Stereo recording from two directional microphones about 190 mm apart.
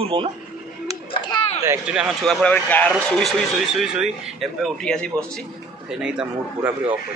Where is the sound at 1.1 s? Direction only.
25° left (ahead or behind).